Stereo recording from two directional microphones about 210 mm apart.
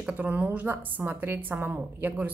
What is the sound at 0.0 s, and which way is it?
Speech, 5° right (ahead or behind).